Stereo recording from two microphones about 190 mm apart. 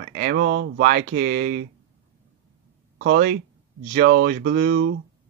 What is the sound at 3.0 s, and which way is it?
Speech, 55° right (ahead or behind).